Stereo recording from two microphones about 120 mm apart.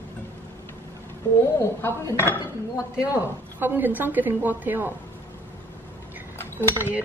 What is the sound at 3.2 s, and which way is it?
A woman's voice, 15° right (ahead or behind).